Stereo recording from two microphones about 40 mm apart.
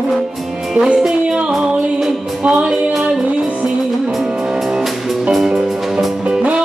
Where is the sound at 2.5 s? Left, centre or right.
Centre.